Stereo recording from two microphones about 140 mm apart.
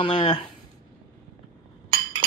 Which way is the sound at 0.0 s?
35° left (ahead or behind).